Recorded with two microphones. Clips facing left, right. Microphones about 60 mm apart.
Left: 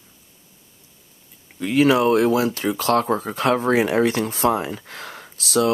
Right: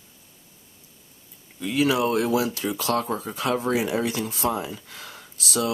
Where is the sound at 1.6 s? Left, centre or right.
Left.